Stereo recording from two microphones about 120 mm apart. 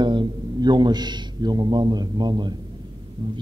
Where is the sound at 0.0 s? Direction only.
40° right (ahead or behind).